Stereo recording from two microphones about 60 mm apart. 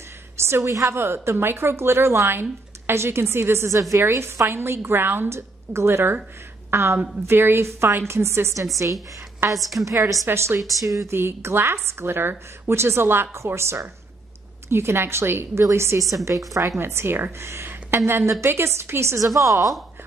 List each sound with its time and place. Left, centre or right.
0.4 s a sound: right
0.7 s a woman's voice: right
0.9 s a woman's voice: right
5.7 s a woman's voice: right
9.6 s a woman's voice: centre
9.8 s a woman's voice: right
10.2 s a woman's voice: right
10.8 s speech: right
11.1 s a woman's voice: right